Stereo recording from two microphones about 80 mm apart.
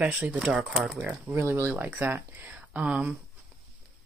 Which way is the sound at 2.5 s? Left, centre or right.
Centre.